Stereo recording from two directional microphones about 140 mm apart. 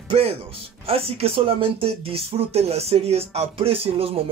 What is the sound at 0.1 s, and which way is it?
Speech, 45° right (ahead or behind).